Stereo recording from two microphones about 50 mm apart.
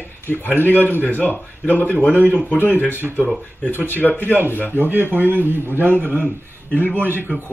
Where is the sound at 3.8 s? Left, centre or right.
Right.